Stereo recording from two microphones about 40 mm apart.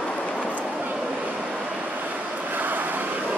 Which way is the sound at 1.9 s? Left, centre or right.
Right.